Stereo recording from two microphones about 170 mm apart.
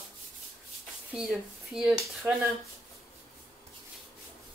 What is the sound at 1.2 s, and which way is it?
Speech, centre (ahead or behind).